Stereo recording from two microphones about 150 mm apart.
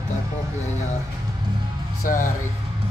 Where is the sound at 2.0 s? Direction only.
60° left (ahead or behind).